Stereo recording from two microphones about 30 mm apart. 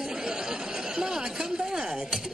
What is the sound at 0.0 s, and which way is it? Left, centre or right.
Chatter, right.